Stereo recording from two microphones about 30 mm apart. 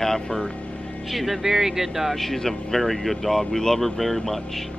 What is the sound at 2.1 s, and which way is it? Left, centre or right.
Speech, centre.